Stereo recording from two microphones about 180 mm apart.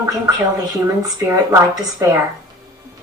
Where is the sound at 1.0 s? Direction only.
15° right (ahead or behind).